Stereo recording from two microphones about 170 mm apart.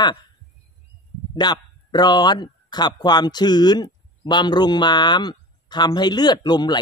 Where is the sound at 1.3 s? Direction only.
25° left (ahead or behind).